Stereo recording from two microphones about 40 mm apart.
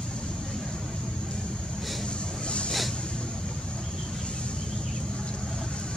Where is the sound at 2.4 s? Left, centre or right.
Left.